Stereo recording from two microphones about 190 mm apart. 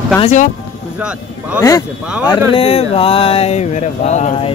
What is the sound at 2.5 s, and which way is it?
Speech, 30° left (ahead or behind).